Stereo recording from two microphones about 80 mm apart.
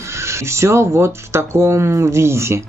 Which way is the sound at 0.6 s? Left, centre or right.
Right.